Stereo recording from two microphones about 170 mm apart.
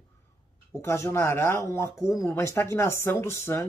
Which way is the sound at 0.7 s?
15° left (ahead or behind).